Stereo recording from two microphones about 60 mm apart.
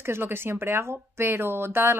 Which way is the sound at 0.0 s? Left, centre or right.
Right.